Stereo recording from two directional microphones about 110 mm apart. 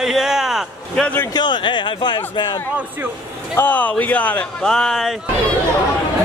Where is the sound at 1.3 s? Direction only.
40° left (ahead or behind).